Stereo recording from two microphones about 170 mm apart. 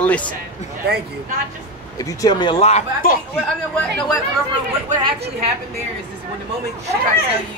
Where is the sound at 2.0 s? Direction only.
20° left (ahead or behind).